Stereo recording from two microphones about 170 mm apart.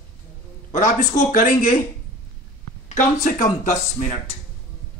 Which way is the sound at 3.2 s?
45° left (ahead or behind).